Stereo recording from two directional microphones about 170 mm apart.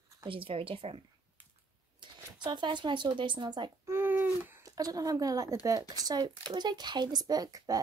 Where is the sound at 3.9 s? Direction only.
10° right (ahead or behind).